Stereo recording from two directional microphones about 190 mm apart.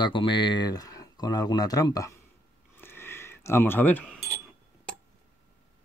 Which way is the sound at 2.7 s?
10° left (ahead or behind).